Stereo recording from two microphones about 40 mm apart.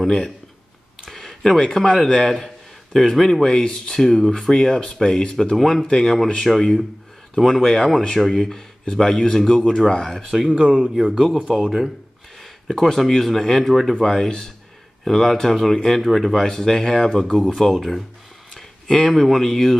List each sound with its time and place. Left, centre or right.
0.0 s speech: centre
1.0 s a sound: centre
1.6 s a man's voice: centre
3.4 s speech: centre
10.5 s speech: right
11.5 s speech: centre
16.3 s speech: centre
17.6 s speech: centre
18.5 s a sound: centre
19.1 s speech: centre